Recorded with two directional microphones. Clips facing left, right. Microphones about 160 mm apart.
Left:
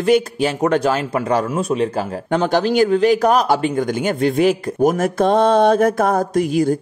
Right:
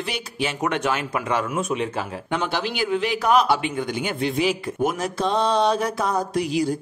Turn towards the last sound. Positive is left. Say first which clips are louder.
# left 6 dB
turn(degrees=50)  # may be behind; listen again after turning